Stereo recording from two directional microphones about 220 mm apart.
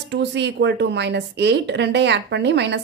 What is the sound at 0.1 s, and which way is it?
A woman's voice, 50° right (ahead or behind).